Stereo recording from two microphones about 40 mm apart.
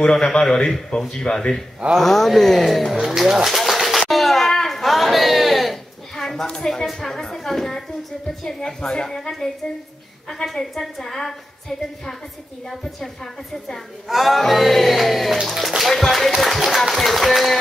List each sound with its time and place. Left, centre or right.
0.1 s a woman's voice: centre
2.0 s speech: centre
3.4 s a sound: centre
6.4 s a woman's voice: centre
12.6 s a woman's voice: centre
14.0 s speech: centre